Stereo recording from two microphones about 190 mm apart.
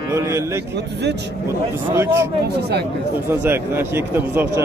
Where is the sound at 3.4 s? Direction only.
10° right (ahead or behind).